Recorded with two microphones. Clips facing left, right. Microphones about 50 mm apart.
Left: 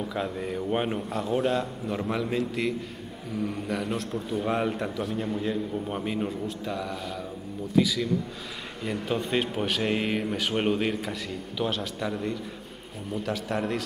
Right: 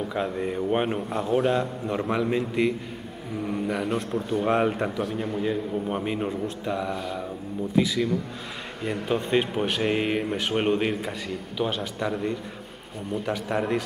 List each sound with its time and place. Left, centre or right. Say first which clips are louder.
0.1 s speech: right 3 dB; centre
4.5 s speech: right 4 dB; centre